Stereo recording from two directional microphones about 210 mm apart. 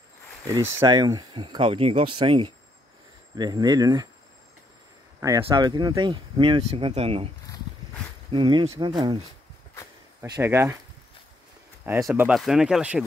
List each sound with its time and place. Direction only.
0.7 s speech: 20° right (ahead or behind)
5.4 s speech: 20° right (ahead or behind)
8.3 s speech: 25° right (ahead or behind)
10.2 s speech: 15° right (ahead or behind)
11.8 s speech: 10° right (ahead or behind)